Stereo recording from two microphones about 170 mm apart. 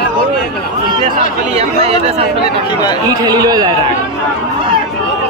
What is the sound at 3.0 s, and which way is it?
Speech, 20° right (ahead or behind).